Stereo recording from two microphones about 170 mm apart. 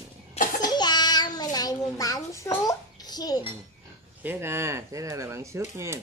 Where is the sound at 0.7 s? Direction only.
25° left (ahead or behind).